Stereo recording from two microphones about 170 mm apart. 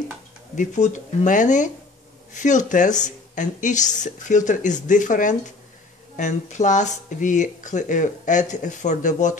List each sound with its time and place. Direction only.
0.6 s speech: 45° left (ahead or behind)